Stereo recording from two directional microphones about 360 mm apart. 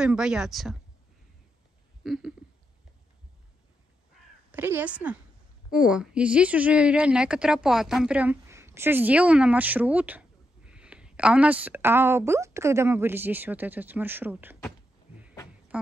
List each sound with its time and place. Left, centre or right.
0.0 s a woman's voice: centre
2.0 s a woman's voice: centre
4.5 s a woman's voice: centre
15.7 s speech: centre